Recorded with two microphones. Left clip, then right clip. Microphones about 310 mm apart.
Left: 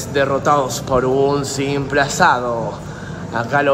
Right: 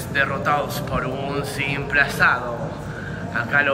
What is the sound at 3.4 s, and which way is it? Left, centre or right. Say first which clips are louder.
Speech: left 3 dB; centre.